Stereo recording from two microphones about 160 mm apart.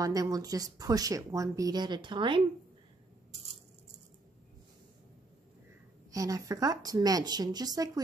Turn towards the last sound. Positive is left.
turn(degrees=-25)  # may be behind; listen again after turning